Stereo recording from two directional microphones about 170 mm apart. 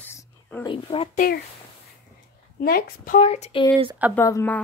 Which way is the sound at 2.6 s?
60° left (ahead or behind).